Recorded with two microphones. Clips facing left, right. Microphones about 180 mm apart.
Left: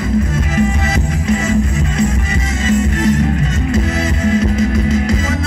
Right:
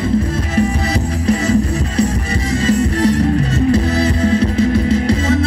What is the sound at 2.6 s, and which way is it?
Music, 35° right (ahead or behind).